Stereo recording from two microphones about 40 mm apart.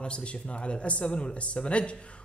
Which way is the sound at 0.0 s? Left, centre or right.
Left.